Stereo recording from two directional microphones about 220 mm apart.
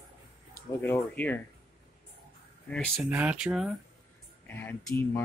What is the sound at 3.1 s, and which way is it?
Speech, 5° right (ahead or behind).